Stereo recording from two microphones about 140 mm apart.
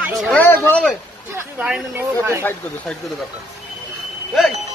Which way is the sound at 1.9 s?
20° right (ahead or behind).